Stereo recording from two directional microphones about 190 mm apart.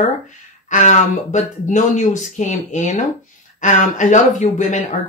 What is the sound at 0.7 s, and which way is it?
Speech, 40° left (ahead or behind).